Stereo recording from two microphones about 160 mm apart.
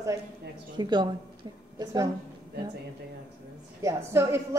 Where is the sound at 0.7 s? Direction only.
30° right (ahead or behind).